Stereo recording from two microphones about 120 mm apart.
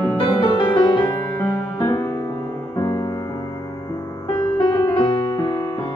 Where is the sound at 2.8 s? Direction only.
30° left (ahead or behind).